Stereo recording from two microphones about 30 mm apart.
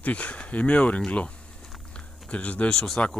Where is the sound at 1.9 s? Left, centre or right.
Left.